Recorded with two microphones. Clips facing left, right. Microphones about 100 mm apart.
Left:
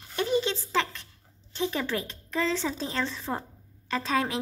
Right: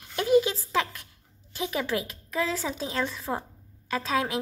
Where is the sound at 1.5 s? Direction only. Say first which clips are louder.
Even; 5° right (ahead or behind).